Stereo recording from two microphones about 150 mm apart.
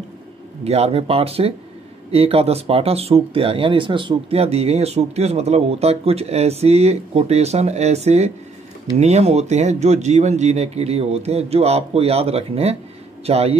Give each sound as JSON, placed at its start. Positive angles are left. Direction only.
{"t": 0.7, "sound": "speech", "side_deg": -45}